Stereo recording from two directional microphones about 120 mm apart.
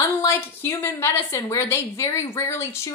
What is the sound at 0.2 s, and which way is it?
Speech, 20° left (ahead or behind).